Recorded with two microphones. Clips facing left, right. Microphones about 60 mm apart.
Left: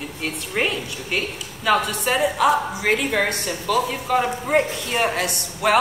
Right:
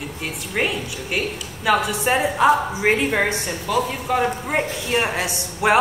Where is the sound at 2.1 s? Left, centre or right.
Right.